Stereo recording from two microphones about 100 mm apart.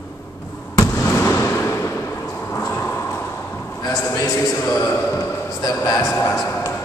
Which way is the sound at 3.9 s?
25° left (ahead or behind).